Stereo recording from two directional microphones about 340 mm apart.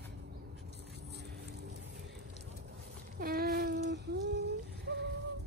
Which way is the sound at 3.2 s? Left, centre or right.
Right.